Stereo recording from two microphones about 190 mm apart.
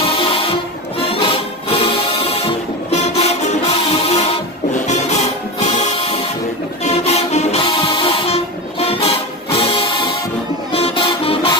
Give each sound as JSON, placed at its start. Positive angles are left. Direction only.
{"t": 0.0, "sound": "music", "side_deg": 30}